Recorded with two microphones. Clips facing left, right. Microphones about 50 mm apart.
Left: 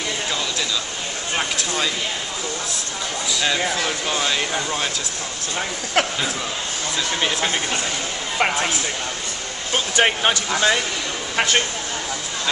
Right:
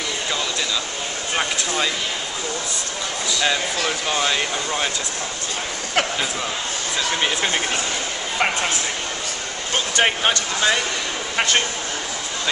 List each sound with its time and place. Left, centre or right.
1.3 s speech: centre
3.8 s speech: centre
6.0 s speech: centre
7.2 s speech: centre
9.9 s speech: centre